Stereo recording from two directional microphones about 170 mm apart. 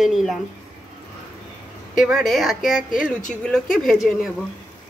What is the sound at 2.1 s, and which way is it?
Speech, centre (ahead or behind).